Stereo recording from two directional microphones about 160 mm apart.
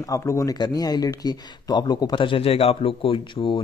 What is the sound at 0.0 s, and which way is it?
Speech, 20° left (ahead or behind).